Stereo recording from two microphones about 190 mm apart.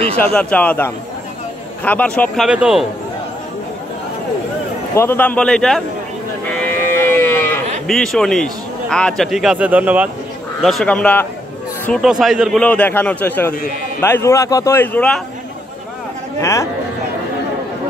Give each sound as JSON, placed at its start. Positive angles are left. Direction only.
{"t": 0.2, "sound": "a man's voice", "side_deg": 5}
{"t": 4.9, "sound": "a man's voice", "side_deg": 10}
{"t": 6.5, "sound": "livestock", "side_deg": 10}
{"t": 7.8, "sound": "a man's voice", "side_deg": 5}
{"t": 16.3, "sound": "a man's voice", "side_deg": 15}